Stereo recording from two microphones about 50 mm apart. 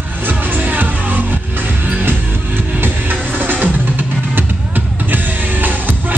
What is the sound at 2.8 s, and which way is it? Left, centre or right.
Music, right.